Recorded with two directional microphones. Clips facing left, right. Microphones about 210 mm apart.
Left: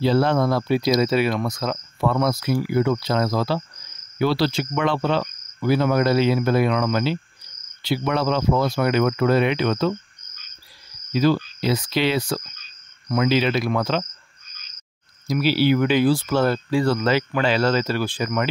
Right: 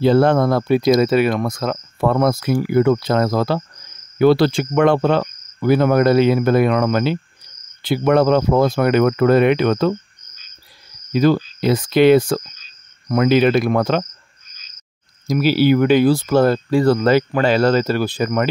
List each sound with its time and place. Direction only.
0.0 s speech: 50° right (ahead or behind)
11.1 s speech: 50° right (ahead or behind)
15.2 s speech: 45° right (ahead or behind)